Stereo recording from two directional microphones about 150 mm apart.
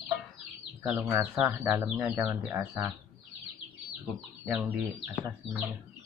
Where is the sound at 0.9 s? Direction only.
15° right (ahead or behind).